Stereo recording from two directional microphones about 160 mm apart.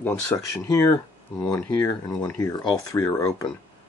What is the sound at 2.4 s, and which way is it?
Speech, 25° left (ahead or behind).